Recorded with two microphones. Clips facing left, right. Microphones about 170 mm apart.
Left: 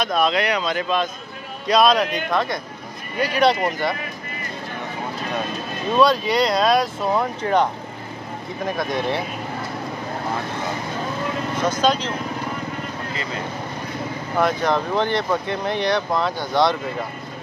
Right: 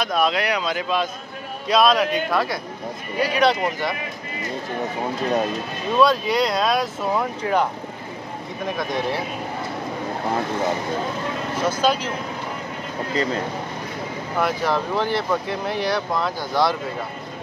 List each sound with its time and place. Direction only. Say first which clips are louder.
0.0 s speech: left 1 dB; 5° right (ahead or behind)
5.9 s speech: left 1 dB; centre (ahead or behind)
11.6 s speech: left 1 dB; 5° right (ahead or behind)
13.1 s speech: right 11 dB; 40° right (ahead or behind)
14.4 s speech: left 2 dB; 5° right (ahead or behind)